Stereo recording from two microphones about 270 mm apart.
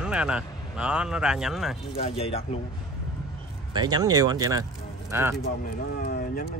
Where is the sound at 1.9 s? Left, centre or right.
Left.